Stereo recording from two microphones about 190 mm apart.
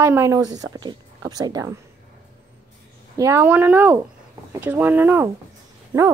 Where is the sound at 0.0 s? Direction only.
15° right (ahead or behind).